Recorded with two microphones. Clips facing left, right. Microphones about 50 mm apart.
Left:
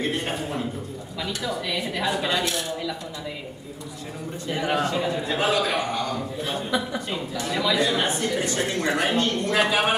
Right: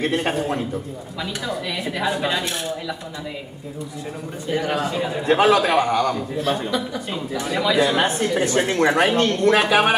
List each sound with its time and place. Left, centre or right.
0.0 s a man's voice: right
1.2 s a woman's voice: centre
4.6 s a man's voice: centre
5.2 s a man's voice: right
7.4 s a woman's voice: centre
7.9 s speech: right
8.8 s a man's voice: right